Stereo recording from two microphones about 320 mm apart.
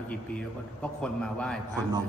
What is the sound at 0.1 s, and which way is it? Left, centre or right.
A man's voice, centre.